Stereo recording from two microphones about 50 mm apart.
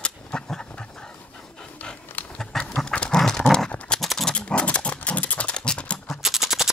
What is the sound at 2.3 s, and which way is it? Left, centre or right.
Pant, centre.